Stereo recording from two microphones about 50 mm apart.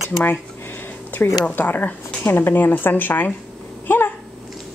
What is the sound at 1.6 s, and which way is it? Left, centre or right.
Speech, left.